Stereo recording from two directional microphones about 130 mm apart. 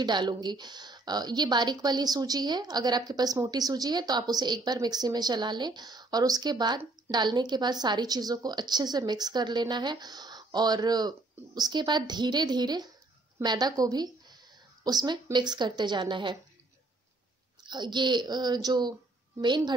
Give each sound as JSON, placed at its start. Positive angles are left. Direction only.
{"t": 0.0, "sound": "a woman's voice", "side_deg": -35}
{"t": 17.6, "sound": "a woman's voice", "side_deg": -35}